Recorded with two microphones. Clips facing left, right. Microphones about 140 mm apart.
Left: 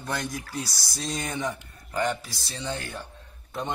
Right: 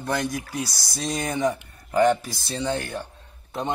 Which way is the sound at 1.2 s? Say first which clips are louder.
Right 9 dB; 40° right (ahead or behind).